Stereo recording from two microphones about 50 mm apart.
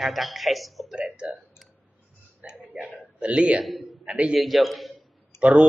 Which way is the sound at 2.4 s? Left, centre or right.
Right.